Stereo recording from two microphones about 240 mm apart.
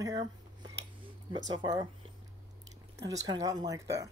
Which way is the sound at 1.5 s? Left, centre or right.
Centre.